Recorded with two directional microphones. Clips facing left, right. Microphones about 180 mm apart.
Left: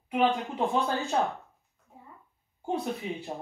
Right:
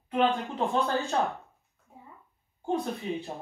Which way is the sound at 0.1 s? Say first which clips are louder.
Even; 15° left (ahead or behind).